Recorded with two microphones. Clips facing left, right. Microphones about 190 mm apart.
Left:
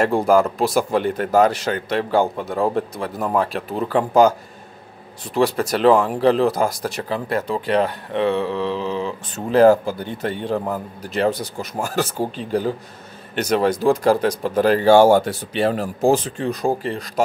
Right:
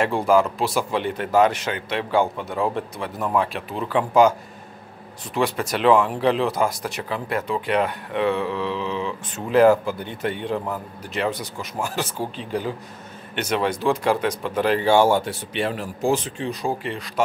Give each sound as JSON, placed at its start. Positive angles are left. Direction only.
{"t": 0.0, "sound": "speech", "side_deg": 40}
{"t": 5.3, "sound": "speech", "side_deg": 35}